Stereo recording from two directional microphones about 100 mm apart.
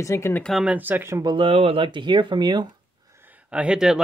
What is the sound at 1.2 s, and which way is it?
Speech, 45° right (ahead or behind).